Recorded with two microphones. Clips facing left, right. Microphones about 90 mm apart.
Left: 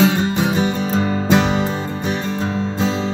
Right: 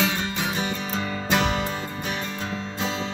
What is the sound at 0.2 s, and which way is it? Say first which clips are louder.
Music: left 9 dB; 25° left (ahead or behind).